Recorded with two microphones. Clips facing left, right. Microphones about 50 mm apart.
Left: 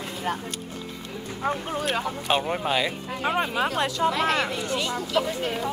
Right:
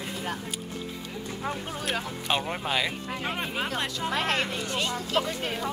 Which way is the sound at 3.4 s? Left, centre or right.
Left.